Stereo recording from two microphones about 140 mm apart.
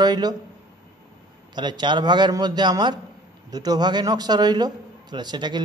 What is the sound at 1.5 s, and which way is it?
A man's voice, 30° right (ahead or behind).